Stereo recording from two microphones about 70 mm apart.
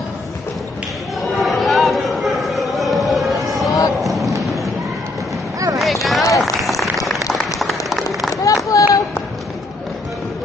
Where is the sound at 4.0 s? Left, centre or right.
Centre.